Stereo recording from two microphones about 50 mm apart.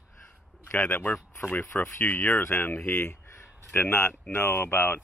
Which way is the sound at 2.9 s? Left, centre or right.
Left.